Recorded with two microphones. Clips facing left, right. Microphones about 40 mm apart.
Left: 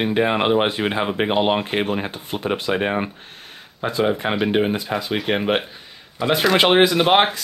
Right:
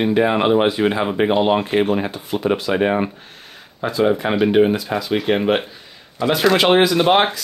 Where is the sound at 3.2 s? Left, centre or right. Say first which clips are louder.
Even; left.